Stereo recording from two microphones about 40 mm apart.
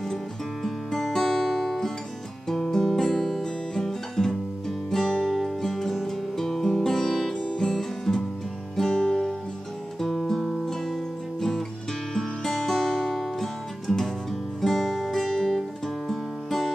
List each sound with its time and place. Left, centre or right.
0.7 s music: centre
5.6 s music: centre
12.1 s music: centre